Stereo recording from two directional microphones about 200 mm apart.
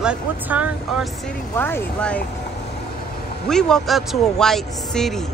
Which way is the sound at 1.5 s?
10° left (ahead or behind).